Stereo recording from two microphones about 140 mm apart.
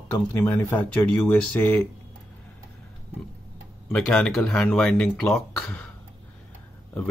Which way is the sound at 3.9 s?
5° left (ahead or behind).